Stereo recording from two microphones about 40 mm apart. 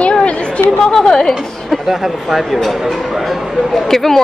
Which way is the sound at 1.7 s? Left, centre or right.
Centre.